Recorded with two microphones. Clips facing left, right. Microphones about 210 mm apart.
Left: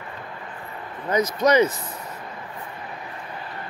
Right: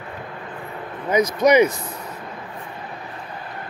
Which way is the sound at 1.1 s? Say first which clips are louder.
Right 3 dB; 10° right (ahead or behind).